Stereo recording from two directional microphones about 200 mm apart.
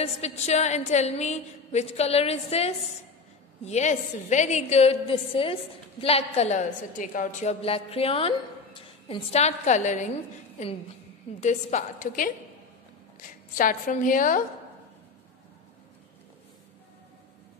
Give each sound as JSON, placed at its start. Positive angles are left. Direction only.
{"t": 0.0, "sound": "a woman's voice", "side_deg": 35}
{"t": 11.4, "sound": "a woman's voice", "side_deg": 40}
{"t": 13.6, "sound": "a woman's voice", "side_deg": 40}